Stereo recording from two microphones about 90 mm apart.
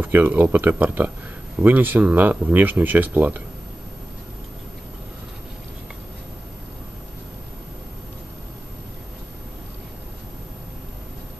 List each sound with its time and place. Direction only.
0.0 s speech: 20° right (ahead or behind)